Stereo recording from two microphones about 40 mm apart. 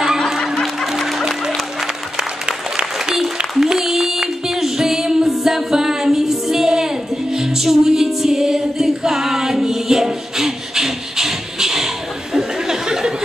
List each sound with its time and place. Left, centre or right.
0.9 s music: centre
2.4 s applause: centre
7.3 s music: centre
12.4 s a sound: centre